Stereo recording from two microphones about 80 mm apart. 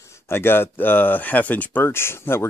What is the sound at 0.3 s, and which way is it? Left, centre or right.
Speech, left.